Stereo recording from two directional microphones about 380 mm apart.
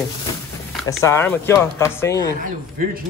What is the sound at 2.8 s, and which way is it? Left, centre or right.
Speech, right.